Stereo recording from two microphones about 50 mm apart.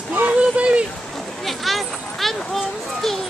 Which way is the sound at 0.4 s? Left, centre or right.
Right.